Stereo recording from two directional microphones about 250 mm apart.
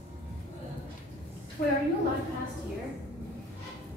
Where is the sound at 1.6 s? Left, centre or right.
Left.